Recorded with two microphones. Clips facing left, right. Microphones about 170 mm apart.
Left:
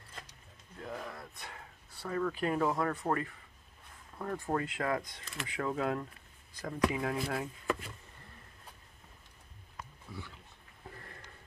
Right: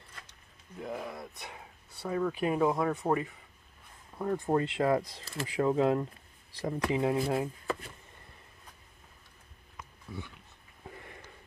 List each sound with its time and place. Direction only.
0.7 s speech: 15° right (ahead or behind)
4.6 s speech: 30° right (ahead or behind)